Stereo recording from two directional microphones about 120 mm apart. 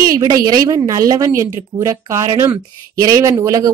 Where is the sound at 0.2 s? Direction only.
35° right (ahead or behind).